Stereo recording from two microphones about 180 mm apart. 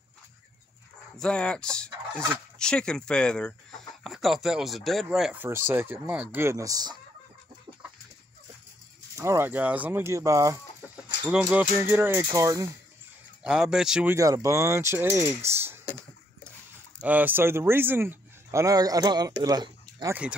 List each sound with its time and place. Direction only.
1.1 s fowl: 5° left (ahead or behind)
4.0 s speech: centre (ahead or behind); by 7.0 s 20° right (ahead or behind)
9.1 s speech: 15° right (ahead or behind)
11.0 s speech: 5° right (ahead or behind)
13.4 s fowl: 5° right (ahead or behind)
14.1 s speech: 20° right (ahead or behind)
17.0 s speech: 10° right (ahead or behind)